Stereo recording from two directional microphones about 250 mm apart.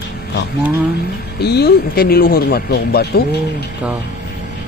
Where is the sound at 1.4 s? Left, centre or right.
Left.